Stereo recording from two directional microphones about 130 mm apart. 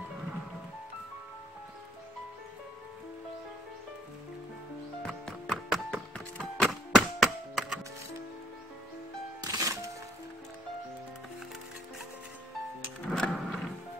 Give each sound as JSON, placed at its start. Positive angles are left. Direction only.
{"t": 5.0, "sound": "music", "side_deg": 5}
{"t": 9.4, "sound": "music", "side_deg": -25}
{"t": 13.1, "sound": "a sound", "side_deg": 5}